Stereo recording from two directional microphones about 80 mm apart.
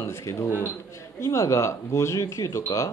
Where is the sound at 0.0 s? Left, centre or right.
Left.